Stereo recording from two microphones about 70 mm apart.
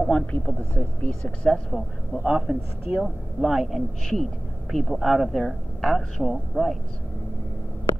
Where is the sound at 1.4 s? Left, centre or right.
Centre.